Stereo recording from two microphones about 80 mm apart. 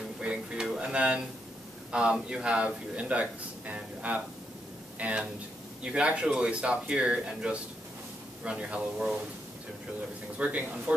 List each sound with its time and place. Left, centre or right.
0.2 s a sound: centre
1.9 s speech: centre
10.3 s speech: centre